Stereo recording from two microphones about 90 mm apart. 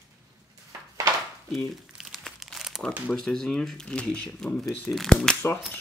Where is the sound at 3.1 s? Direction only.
5° left (ahead or behind).